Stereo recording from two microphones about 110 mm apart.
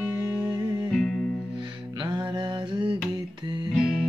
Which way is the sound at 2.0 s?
40° right (ahead or behind).